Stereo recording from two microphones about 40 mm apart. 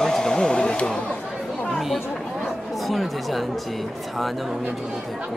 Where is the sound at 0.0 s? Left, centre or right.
Centre.